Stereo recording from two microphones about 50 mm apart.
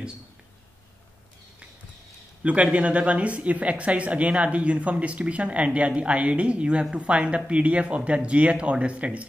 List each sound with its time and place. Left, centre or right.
2.4 s speech: right